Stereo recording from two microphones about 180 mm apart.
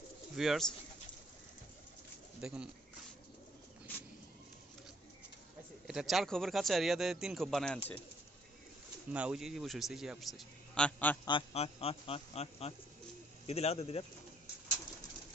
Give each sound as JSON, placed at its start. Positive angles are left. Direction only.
{"t": 0.4, "sound": "a man's voice", "side_deg": 0}
{"t": 2.4, "sound": "a man's voice", "side_deg": -5}
{"t": 5.9, "sound": "a man's voice", "side_deg": 0}
{"t": 9.1, "sound": "a man's voice", "side_deg": -5}
{"t": 11.2, "sound": "a man's voice", "side_deg": 30}